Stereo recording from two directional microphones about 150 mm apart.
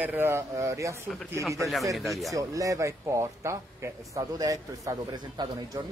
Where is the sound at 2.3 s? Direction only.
20° right (ahead or behind).